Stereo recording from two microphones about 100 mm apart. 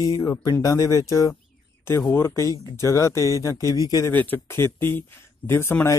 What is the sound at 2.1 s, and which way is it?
Speech, 30° left (ahead or behind).